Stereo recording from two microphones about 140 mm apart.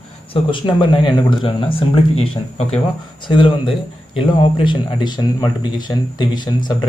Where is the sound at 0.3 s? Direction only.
35° left (ahead or behind).